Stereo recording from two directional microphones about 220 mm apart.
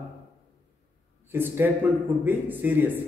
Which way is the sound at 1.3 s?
10° right (ahead or behind).